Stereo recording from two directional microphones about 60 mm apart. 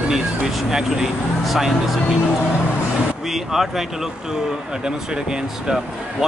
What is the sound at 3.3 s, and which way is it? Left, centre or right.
Speech, centre.